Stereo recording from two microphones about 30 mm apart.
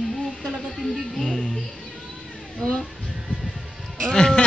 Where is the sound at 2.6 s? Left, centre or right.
Left.